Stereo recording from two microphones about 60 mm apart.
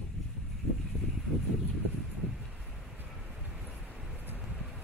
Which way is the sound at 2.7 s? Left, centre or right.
Centre.